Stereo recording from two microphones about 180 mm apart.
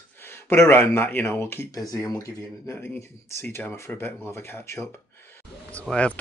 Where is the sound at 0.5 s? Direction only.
10° left (ahead or behind).